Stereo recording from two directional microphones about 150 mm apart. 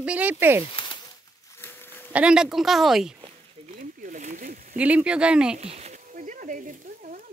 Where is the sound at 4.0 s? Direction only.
55° right (ahead or behind).